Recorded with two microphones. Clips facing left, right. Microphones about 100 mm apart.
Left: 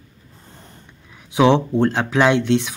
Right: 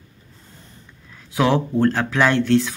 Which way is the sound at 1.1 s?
15° left (ahead or behind).